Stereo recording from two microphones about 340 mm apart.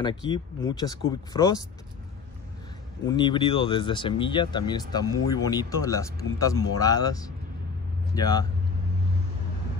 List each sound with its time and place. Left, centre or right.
0.0 s speech: centre
3.1 s speech: centre